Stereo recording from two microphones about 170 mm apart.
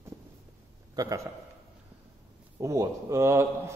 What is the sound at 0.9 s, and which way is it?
Speech, 20° right (ahead or behind).